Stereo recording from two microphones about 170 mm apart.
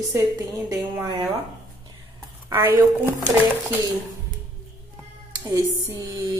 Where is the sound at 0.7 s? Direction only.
15° right (ahead or behind).